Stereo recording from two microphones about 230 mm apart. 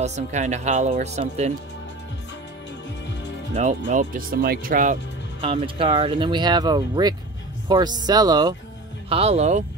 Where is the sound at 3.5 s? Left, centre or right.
Right.